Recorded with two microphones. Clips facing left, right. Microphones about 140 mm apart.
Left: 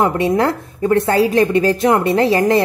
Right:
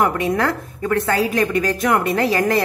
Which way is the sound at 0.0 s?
25° left (ahead or behind).